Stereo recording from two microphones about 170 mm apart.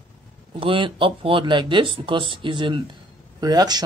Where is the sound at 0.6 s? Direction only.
30° right (ahead or behind).